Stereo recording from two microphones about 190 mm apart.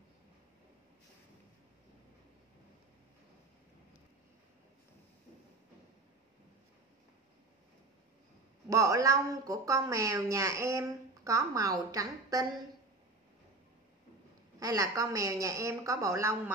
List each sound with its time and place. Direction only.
8.6 s speech: 15° right (ahead or behind)
14.6 s speech: 20° right (ahead or behind)